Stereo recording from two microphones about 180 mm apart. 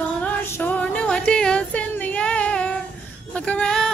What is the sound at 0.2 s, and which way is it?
Music, 10° left (ahead or behind).